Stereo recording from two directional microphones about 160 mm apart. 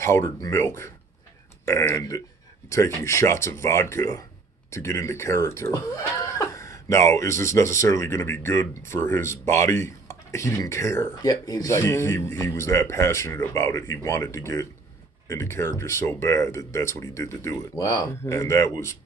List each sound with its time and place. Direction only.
0.0 s speech: 20° left (ahead or behind)